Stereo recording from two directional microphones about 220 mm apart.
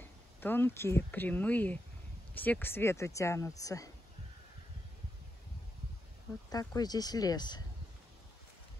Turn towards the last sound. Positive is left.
turn(degrees=20)  # may be behind; listen again after turning